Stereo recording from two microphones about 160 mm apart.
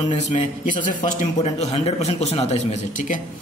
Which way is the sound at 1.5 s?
40° left (ahead or behind).